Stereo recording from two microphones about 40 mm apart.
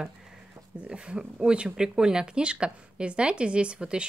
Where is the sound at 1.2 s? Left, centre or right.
Centre.